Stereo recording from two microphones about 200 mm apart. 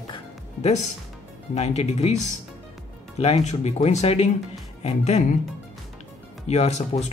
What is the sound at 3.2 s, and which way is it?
Speech, 35° left (ahead or behind).